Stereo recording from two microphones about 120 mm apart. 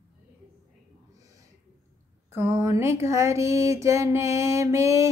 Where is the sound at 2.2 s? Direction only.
20° right (ahead or behind).